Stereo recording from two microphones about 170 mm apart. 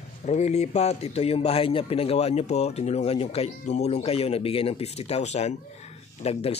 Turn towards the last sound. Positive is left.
turn(degrees=40)  # may be behind; listen again after turning